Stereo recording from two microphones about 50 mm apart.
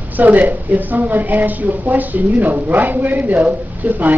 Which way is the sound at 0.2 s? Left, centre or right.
Right.